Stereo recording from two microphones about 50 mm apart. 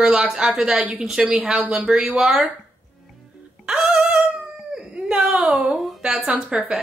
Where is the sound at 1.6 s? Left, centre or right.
Centre.